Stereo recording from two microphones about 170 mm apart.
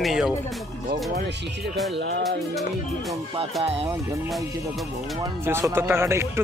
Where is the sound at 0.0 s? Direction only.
Centre (ahead or behind).